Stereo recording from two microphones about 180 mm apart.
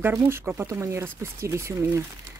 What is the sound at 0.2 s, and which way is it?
Speech, 15° right (ahead or behind).